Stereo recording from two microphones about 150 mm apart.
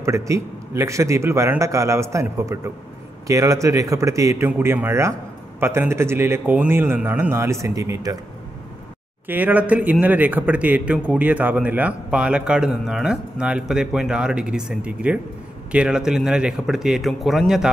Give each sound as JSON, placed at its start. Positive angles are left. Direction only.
{"t": 0.0, "sound": "a man's voice", "side_deg": -20}
{"t": 9.3, "sound": "a man's voice", "side_deg": -10}